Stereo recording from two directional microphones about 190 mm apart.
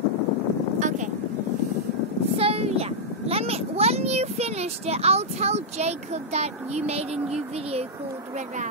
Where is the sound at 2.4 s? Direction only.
30° right (ahead or behind).